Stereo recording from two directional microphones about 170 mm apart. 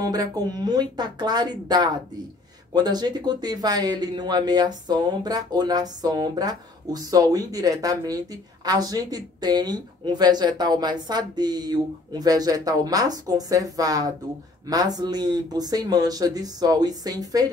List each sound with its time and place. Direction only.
0.0 s a man's voice: 20° right (ahead or behind)